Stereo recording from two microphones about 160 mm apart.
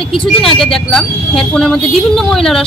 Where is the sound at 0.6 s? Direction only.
Centre (ahead or behind).